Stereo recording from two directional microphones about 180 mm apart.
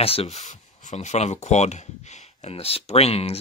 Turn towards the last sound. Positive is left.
turn(degrees=35)  # may be behind; listen again after turning